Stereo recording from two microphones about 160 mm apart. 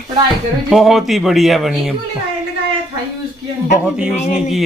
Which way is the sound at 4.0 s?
5° right (ahead or behind).